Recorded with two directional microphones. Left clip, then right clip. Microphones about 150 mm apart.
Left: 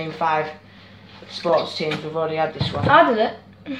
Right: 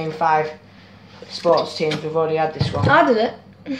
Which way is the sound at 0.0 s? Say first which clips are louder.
Right 3 dB; 5° right (ahead or behind).